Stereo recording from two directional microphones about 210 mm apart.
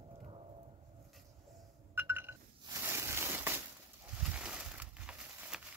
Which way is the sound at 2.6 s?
15° right (ahead or behind).